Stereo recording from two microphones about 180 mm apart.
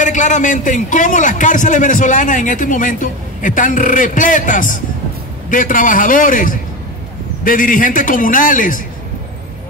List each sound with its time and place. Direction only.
0.0 s a man's voice: 45° left (ahead or behind)